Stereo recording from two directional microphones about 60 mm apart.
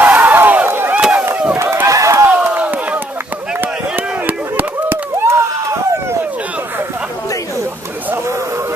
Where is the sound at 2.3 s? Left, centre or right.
Right.